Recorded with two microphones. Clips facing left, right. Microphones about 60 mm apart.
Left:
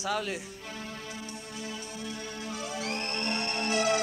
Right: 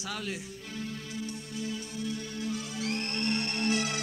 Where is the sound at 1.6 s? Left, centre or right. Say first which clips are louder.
Right 4 dB; left.